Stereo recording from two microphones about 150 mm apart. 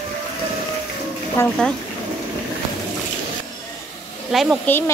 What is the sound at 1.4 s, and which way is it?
Speech, 15° left (ahead or behind).